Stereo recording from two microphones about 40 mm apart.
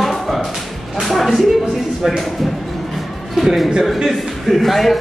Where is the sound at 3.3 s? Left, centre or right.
Centre.